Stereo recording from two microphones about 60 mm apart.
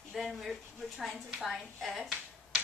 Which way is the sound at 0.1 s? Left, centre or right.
Centre.